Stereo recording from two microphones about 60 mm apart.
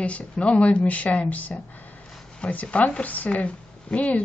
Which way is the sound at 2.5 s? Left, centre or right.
Left.